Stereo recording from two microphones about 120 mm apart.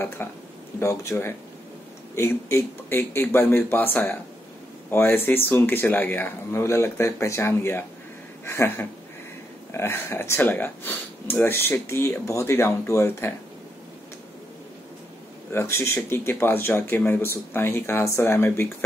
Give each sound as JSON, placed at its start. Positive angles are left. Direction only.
{"t": 0.2, "sound": "speech", "side_deg": 20}
{"t": 15.5, "sound": "speech", "side_deg": 20}